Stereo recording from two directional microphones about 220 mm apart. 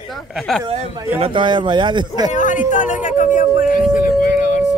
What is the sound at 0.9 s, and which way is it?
Speech, 15° right (ahead or behind).